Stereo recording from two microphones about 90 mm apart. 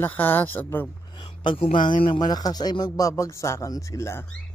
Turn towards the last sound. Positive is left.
turn(degrees=30)  # may be behind; listen again after turning